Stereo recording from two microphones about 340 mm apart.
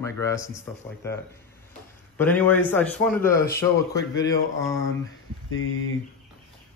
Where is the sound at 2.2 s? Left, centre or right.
Centre.